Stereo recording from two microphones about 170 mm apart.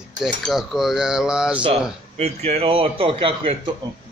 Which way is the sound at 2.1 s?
35° right (ahead or behind).